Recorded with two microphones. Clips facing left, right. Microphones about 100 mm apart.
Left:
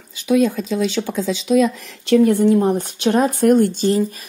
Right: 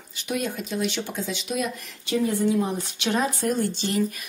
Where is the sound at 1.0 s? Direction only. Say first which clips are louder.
Left 9 dB; 90° left.